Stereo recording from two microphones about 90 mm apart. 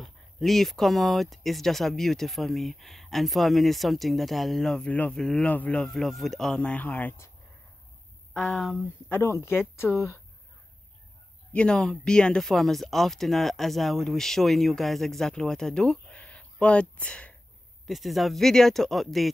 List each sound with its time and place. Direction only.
0.0 s speech: 5° left (ahead or behind)
5.5 s speech: 15° left (ahead or behind)
5.9 s speech: centre (ahead or behind); by 7.2 s 20° left (ahead or behind)
8.3 s speech: centre (ahead or behind)
9.1 s speech: 30° left (ahead or behind)
11.5 s speech: 10° left (ahead or behind)
17.8 s speech: centre (ahead or behind)